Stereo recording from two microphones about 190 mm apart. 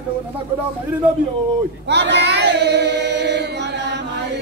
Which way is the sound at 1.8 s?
65° right (ahead or behind).